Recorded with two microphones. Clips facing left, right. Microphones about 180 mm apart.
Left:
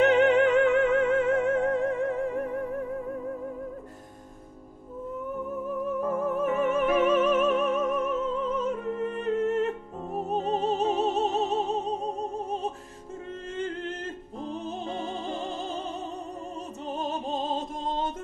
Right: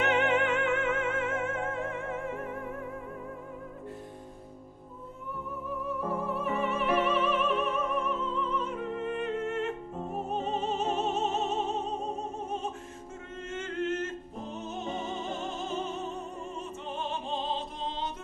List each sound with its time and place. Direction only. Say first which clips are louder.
0.0 s music: left 7 dB; 35° left (ahead or behind)
5.9 s music: left 5 dB; 50° left (ahead or behind)
10.3 s opera: left 5 dB; 35° left (ahead or behind)
16.9 s music: left 4 dB; 40° left (ahead or behind)